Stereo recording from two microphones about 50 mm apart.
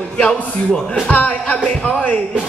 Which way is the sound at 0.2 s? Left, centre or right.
Centre.